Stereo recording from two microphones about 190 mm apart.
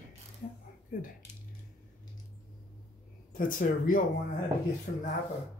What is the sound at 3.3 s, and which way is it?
Speech, 45° left (ahead or behind).